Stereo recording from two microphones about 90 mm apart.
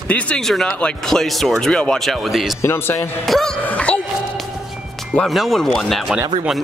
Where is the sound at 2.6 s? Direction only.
25° left (ahead or behind).